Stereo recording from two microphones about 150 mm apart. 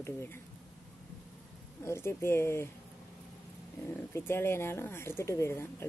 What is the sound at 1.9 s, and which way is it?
Speech, 15° left (ahead or behind).